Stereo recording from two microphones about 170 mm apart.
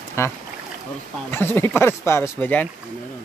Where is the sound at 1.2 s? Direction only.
10° left (ahead or behind).